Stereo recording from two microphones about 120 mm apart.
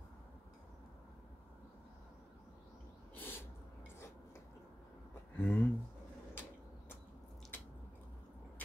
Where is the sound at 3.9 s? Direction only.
25° left (ahead or behind).